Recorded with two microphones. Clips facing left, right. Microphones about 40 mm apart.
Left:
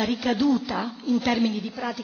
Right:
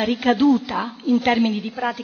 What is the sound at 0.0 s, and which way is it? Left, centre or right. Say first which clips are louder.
A woman's voice: right 5 dB; right.